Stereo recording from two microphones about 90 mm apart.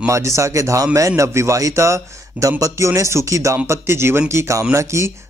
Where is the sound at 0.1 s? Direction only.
35° right (ahead or behind).